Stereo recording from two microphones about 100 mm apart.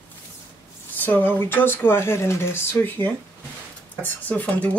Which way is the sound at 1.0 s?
20° left (ahead or behind).